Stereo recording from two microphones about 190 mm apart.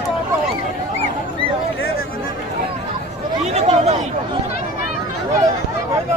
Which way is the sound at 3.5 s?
35° right (ahead or behind).